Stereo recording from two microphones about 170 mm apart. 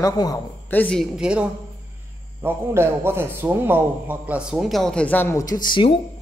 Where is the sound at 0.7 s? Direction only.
10° left (ahead or behind).